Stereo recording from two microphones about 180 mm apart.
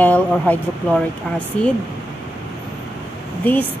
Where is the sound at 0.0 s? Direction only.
10° left (ahead or behind).